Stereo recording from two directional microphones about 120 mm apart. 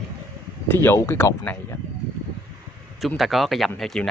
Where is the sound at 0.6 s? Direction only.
20° left (ahead or behind).